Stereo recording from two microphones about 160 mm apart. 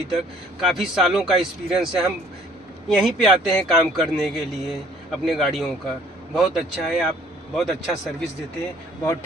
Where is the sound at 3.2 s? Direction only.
Centre (ahead or behind).